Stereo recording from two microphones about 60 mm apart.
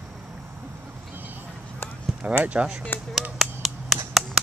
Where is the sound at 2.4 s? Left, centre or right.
Right.